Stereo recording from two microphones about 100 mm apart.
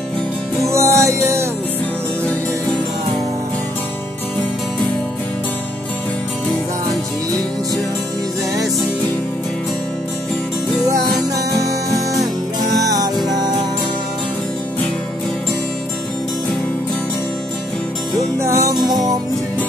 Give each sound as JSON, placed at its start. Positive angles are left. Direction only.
{"t": 0.7, "sound": "music", "side_deg": -30}
{"t": 12.7, "sound": "music", "side_deg": -35}
{"t": 18.4, "sound": "music", "side_deg": -30}
{"t": 18.8, "sound": "music", "side_deg": -40}